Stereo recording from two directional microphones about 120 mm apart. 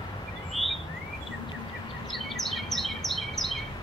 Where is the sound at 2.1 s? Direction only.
Centre (ahead or behind).